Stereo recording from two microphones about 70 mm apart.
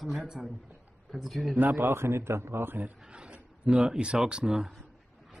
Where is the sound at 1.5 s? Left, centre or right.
Right.